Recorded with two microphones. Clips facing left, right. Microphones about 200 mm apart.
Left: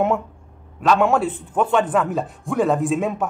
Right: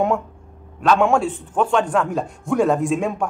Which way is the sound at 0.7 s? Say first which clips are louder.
Right 1 dB; centre (ahead or behind).